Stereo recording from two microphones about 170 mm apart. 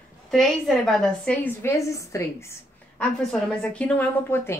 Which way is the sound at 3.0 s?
5° left (ahead or behind).